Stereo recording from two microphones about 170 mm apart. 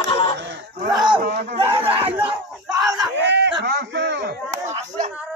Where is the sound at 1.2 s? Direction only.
65° right (ahead or behind).